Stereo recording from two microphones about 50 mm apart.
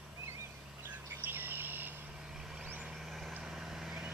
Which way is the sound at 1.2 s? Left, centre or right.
Right.